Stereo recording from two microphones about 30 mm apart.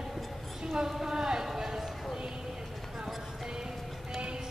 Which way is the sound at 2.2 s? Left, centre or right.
Right.